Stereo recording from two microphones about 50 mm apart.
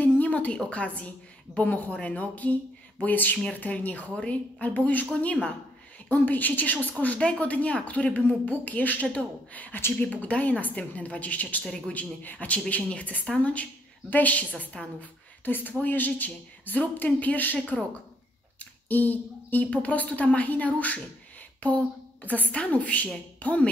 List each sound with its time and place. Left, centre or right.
0.0 s a sound: left
0.7 s a woman's voice: left
7.2 s a woman's voice: centre
11.6 s a man's voice: centre
11.9 s speech: left
14.7 s a woman's voice: left
15.4 s speech: left
17.6 s a woman's voice: centre
18.9 s a woman's voice: left